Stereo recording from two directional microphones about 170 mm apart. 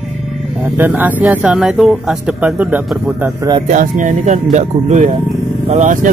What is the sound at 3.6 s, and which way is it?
Speech, 50° right (ahead or behind).